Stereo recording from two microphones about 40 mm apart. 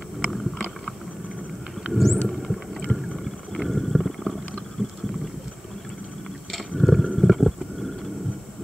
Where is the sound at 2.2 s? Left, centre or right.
Centre.